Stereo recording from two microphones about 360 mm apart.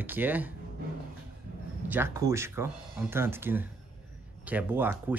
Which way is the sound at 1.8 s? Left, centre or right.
Centre.